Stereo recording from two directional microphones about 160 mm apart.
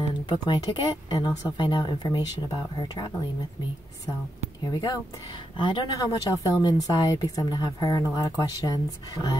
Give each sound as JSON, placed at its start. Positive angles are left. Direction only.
{"t": 0.3, "sound": "speech", "side_deg": 25}
{"t": 4.6, "sound": "speech", "side_deg": 25}